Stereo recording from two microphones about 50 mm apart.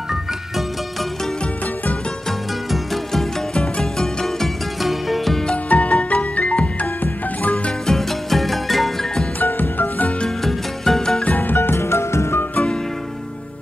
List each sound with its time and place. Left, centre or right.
2.7 s music: centre
4.8 s music: centre
5.7 s music: left
7.8 s music: centre
9.4 s music: left
10.4 s music: centre
11.2 s music: left